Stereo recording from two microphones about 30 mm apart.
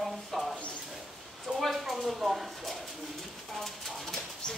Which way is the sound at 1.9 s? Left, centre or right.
Centre.